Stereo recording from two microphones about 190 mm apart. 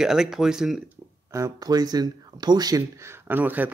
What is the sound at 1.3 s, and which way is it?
Speech, 20° right (ahead or behind).